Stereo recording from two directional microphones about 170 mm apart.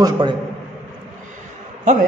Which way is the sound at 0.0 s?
25° right (ahead or behind).